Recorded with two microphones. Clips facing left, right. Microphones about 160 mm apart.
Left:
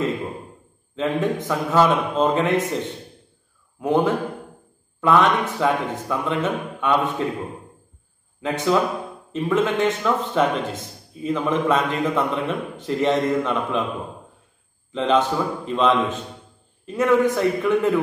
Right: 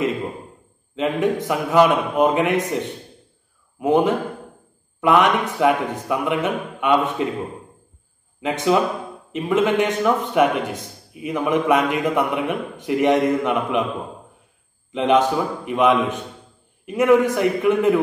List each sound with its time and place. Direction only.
0.9 s a man's voice: 15° right (ahead or behind)
3.8 s a man's voice: 20° right (ahead or behind)
8.4 s a man's voice: 20° right (ahead or behind)
14.9 s a man's voice: 15° right (ahead or behind)